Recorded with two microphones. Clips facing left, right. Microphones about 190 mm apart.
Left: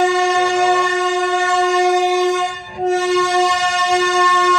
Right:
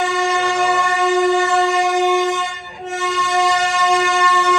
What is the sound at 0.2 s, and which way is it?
Train, centre (ahead or behind).